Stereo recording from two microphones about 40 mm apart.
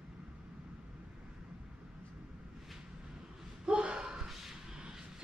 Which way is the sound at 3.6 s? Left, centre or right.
Right.